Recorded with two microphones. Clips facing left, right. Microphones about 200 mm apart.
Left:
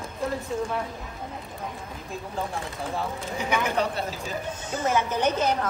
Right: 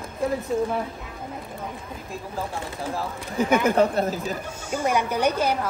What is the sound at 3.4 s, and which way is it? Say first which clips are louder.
Speech: right 7 dB; 50° right (ahead or behind).